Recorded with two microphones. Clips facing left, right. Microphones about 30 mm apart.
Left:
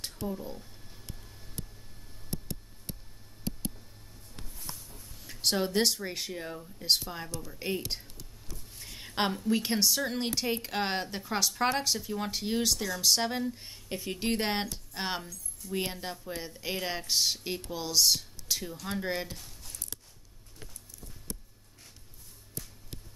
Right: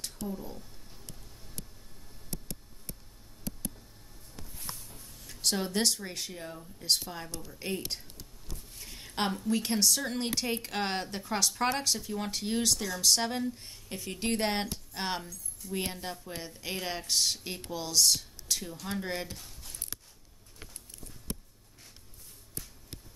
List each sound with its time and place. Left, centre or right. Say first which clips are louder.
0.3 s a woman's voice: left 2 dB; centre
1.0 s a sound: left 3 dB; left
4.6 s a sound: right 1 dB; centre
4.9 s speech: left 1 dB; centre
7.2 s speech: left 2 dB; centre
7.5 s a woman's voice: left 2 dB; centre
8.9 s a sound: left 2 dB; centre
9.5 s speech: right 1 dB; centre
13.6 s a woman's voice: left 3 dB; centre